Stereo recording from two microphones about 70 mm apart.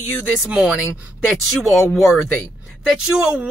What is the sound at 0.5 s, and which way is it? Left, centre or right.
Speech, centre.